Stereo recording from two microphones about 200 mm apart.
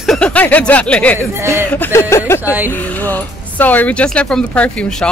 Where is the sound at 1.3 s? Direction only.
15° right (ahead or behind).